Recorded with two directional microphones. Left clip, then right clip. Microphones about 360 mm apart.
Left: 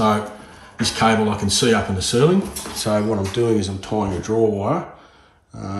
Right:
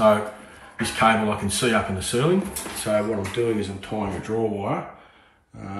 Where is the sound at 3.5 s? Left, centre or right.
Centre.